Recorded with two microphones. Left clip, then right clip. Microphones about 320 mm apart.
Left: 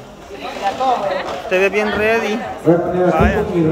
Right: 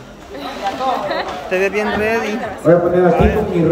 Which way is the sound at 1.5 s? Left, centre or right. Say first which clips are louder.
Left 2 dB; centre.